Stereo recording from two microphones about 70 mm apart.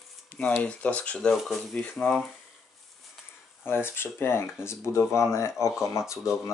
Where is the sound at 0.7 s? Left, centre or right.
Centre.